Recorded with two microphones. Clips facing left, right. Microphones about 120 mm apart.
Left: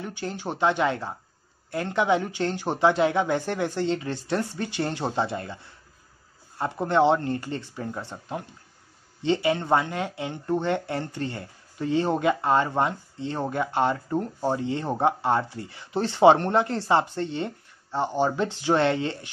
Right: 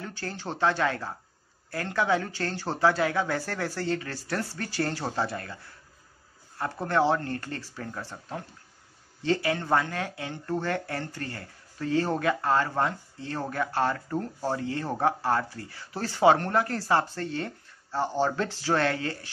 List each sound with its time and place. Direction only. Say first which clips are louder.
0.0 s speech: left 4 dB; 15° left (ahead or behind)
6.6 s speech: left 4 dB; 20° left (ahead or behind)